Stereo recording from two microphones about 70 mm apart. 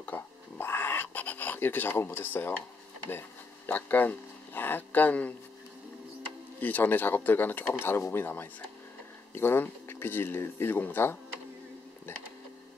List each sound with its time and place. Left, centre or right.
0.0 s a sound: left
3.1 s speech: left
6.6 s speech: left